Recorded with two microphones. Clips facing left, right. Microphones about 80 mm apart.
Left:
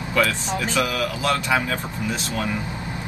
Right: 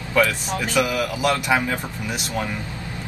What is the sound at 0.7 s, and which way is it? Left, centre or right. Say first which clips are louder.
Speech: right 4 dB; centre.